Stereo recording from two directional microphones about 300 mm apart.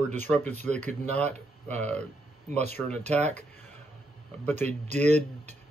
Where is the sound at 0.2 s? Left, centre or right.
Centre.